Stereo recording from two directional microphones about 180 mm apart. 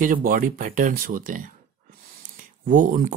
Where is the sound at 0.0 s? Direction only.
50° right (ahead or behind).